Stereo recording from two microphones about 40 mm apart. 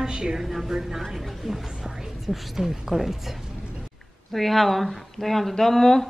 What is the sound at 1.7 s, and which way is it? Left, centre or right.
Speech, centre.